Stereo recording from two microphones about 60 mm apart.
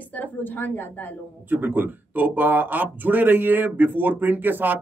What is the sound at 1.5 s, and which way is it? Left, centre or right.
Speech, right.